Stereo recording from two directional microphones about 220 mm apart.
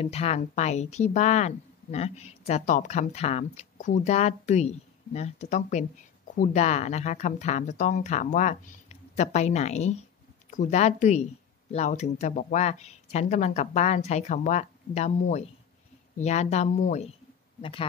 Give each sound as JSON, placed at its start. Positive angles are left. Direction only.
{"t": 0.0, "sound": "speech", "side_deg": 30}